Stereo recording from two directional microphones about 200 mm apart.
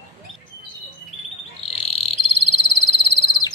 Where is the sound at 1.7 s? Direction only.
30° left (ahead or behind).